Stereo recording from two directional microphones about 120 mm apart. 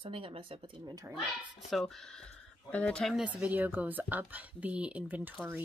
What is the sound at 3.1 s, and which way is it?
Speech, 10° right (ahead or behind).